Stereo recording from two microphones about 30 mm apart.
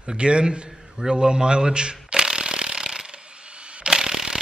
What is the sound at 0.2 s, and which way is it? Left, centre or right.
Speech, right.